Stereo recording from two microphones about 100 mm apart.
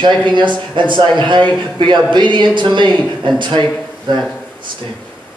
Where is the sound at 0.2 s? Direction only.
50° right (ahead or behind).